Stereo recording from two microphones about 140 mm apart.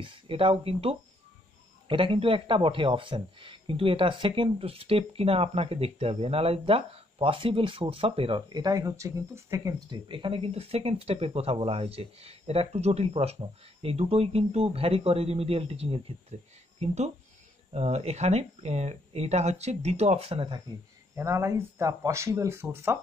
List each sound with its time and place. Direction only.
0.0 s a man's voice: 40° right (ahead or behind); by 9.8 s 20° right (ahead or behind)
9.8 s speech: 35° right (ahead or behind)
21.2 s speech: 20° right (ahead or behind)